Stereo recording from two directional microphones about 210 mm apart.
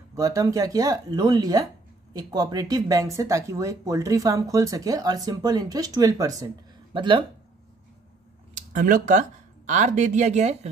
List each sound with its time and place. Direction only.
0.1 s speech: 15° right (ahead or behind)
8.5 s speech: 40° right (ahead or behind)